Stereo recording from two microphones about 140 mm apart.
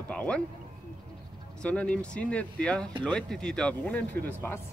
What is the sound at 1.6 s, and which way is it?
Speech, 10° left (ahead or behind).